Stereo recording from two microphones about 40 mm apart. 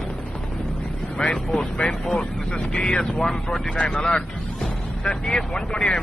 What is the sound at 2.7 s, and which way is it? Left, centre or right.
Speech, centre.